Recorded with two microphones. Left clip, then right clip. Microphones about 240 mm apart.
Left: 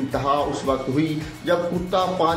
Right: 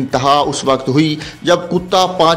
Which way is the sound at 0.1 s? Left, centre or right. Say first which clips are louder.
Right 10 dB; right.